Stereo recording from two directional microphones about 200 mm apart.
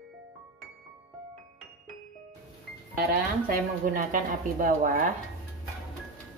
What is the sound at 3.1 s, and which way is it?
A woman's voice, 45° right (ahead or behind).